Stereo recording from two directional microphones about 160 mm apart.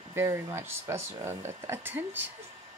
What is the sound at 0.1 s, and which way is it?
A woman's voice, 15° right (ahead or behind).